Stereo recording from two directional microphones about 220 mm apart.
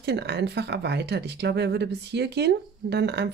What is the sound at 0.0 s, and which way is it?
Speech, 50° right (ahead or behind).